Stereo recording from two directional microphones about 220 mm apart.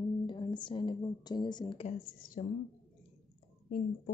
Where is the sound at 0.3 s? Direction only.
20° left (ahead or behind).